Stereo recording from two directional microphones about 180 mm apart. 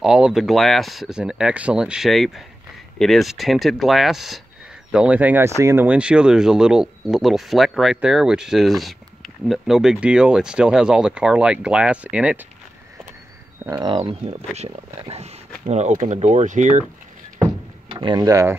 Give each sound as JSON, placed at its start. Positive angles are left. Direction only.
{"t": 0.0, "sound": "speech", "side_deg": -5}
{"t": 13.8, "sound": "speech", "side_deg": -35}
{"t": 17.9, "sound": "speech", "side_deg": -20}